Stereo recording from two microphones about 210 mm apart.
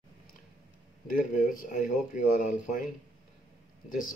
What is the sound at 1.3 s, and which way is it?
Speech, 40° left (ahead or behind).